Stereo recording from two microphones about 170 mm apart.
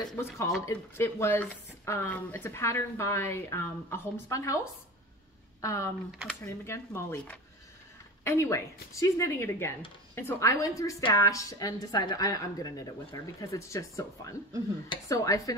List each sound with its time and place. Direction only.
0.0 s a woman's voice: 20° left (ahead or behind)
5.6 s a woman's voice: 20° left (ahead or behind)